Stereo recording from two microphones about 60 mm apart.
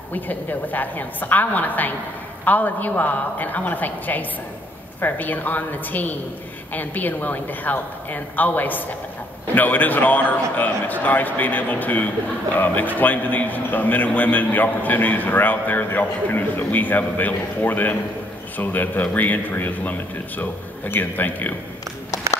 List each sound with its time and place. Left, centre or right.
0.1 s a man's voice: left